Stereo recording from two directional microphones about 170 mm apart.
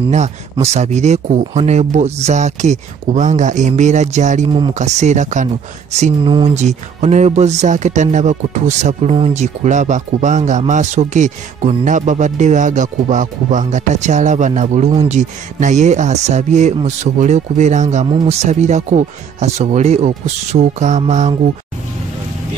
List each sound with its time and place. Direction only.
0.1 s speech: 40° right (ahead or behind)
4.5 s speech: 30° right (ahead or behind)
4.7 s speech: 40° right (ahead or behind)